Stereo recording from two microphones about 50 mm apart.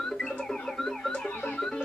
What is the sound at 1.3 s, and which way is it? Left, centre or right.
Music, left.